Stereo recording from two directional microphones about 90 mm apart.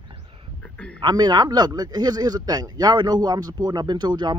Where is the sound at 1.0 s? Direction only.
50° right (ahead or behind).